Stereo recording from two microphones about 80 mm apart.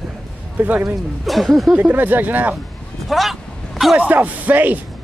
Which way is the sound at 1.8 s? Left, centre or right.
Right.